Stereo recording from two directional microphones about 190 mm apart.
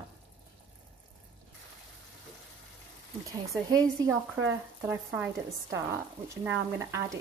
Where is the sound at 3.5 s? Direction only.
20° right (ahead or behind).